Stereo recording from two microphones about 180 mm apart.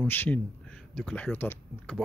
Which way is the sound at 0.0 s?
10° left (ahead or behind).